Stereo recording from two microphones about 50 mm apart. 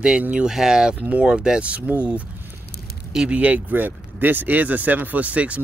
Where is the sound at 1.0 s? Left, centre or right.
Right.